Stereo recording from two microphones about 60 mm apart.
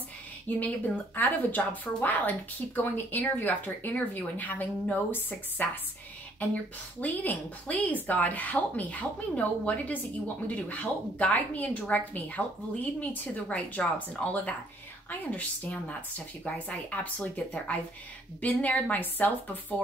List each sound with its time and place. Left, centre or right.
0.6 s a woman's voice: left